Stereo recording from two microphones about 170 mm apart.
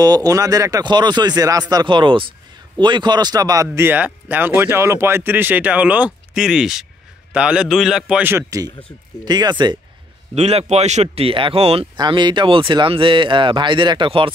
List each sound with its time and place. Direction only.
0.0 s speech: 20° right (ahead or behind)
3.7 s speech: 10° right (ahead or behind)
10.3 s speech: 40° right (ahead or behind)